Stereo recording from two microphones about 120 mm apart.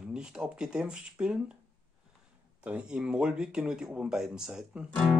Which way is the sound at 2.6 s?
10° right (ahead or behind).